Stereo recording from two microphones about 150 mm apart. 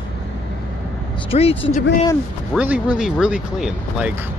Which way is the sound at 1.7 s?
65° left (ahead or behind).